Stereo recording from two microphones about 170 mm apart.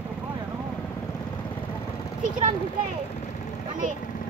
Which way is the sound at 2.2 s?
50° right (ahead or behind).